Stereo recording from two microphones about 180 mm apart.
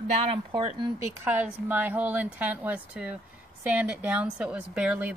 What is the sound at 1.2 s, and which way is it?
A woman's voice, 10° right (ahead or behind).